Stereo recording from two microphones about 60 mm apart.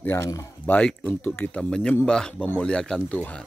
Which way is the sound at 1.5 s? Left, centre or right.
Centre.